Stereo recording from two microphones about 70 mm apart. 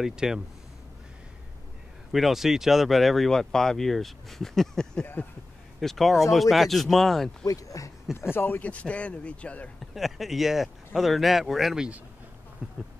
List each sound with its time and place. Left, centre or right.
0.0 s speech: centre
2.1 s speech: centre
7.4 s speech: left
8.1 s a man's voice: left; by 9.7 s centre
9.8 s speech: centre
12.6 s insect: centre